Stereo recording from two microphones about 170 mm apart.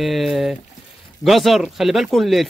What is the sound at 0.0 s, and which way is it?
Speech, centre (ahead or behind).